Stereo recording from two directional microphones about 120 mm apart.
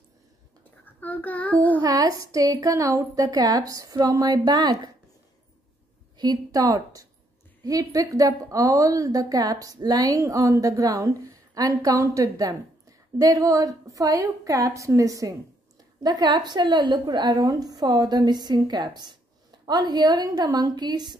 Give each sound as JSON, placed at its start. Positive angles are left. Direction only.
{"t": 0.8, "sound": "child singing", "side_deg": 15}
{"t": 1.8, "sound": "a woman's voice", "side_deg": -30}
{"t": 6.1, "sound": "a woman's voice", "side_deg": -35}